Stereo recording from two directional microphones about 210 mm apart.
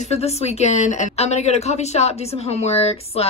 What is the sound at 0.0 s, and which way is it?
Speech, 30° left (ahead or behind).